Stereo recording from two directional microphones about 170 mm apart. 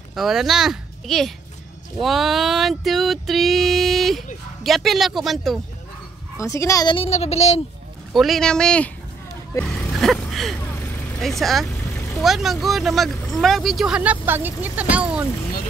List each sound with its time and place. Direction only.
0.1 s speech: centre (ahead or behind)
6.3 s speech: 20° left (ahead or behind)
7.1 s a child's voice: 40° left (ahead or behind)
8.1 s speech: centre (ahead or behind)
9.5 s vehicle: 10° left (ahead or behind)
11.2 s speech: centre (ahead or behind)